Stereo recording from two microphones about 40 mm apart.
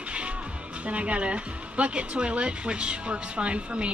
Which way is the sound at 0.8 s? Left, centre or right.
Right.